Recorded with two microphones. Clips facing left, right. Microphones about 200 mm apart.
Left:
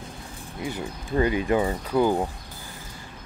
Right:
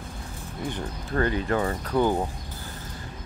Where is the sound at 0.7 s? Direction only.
10° left (ahead or behind).